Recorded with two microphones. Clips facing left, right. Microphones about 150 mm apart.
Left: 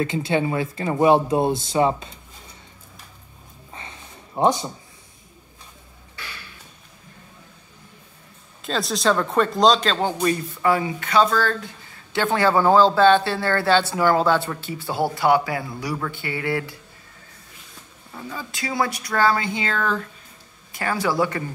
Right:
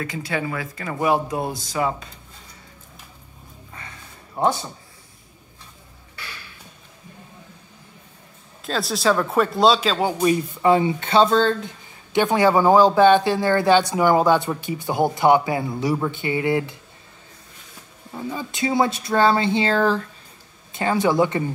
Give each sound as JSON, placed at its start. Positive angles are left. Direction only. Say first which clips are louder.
{"t": 0.0, "sound": "speech", "louder": "left 5 dB", "side_deg": 25}
{"t": 3.7, "sound": "a sound", "louder": "left 2 dB", "side_deg": 20}
{"t": 8.6, "sound": "speech", "louder": "right 1 dB", "side_deg": 0}
{"t": 10.6, "sound": "speech", "louder": "right 4 dB", "side_deg": -25}
{"t": 18.1, "sound": "speech", "louder": "right 5 dB", "side_deg": -20}